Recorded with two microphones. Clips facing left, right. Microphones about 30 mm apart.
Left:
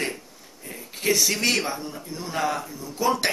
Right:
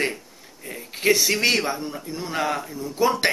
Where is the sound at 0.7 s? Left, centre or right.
Right.